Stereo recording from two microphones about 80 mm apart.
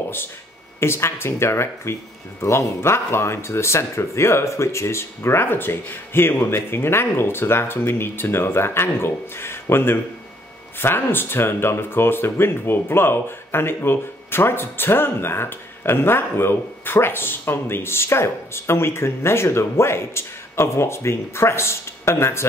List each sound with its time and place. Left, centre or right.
0.7 s speech: left